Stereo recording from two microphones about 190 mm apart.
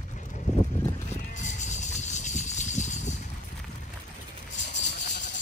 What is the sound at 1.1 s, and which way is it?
Music, 40° left (ahead or behind).